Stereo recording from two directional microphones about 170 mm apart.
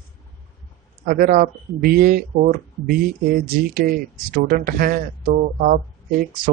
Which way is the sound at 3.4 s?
60° right (ahead or behind).